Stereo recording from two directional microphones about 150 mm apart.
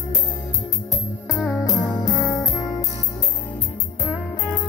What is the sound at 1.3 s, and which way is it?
Music, 5° right (ahead or behind).